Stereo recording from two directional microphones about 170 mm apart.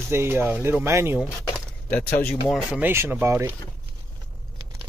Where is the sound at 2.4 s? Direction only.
5° right (ahead or behind).